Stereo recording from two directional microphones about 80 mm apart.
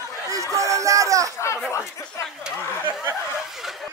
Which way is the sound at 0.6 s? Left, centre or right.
Right.